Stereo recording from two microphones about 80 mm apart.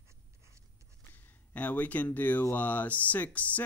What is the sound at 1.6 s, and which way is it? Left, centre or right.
Speech, centre.